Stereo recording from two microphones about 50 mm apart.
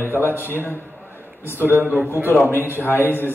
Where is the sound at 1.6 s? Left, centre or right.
Right.